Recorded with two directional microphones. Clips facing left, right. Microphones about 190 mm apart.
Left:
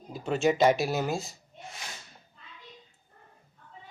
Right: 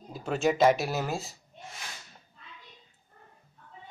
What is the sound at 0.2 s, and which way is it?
Speech, centre (ahead or behind).